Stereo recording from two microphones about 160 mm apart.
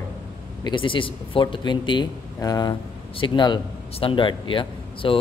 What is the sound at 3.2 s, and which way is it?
A man's voice, 30° left (ahead or behind).